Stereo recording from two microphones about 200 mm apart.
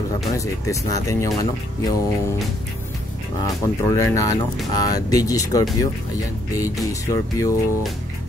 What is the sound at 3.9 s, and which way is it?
Speech, 15° left (ahead or behind).